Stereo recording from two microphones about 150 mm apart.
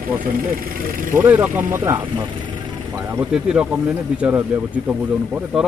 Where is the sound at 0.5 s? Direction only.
70° right (ahead or behind).